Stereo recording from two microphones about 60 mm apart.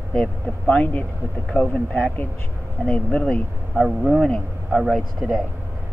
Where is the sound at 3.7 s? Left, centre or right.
Centre.